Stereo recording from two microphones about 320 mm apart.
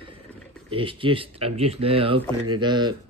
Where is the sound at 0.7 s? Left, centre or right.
Centre.